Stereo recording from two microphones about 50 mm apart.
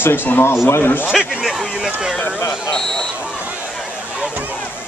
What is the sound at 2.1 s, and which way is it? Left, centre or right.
Speech, left.